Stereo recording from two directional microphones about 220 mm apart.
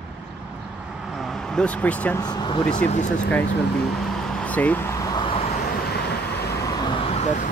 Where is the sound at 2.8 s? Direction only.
35° left (ahead or behind).